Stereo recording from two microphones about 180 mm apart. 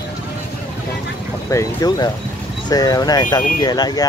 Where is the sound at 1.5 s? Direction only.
20° left (ahead or behind).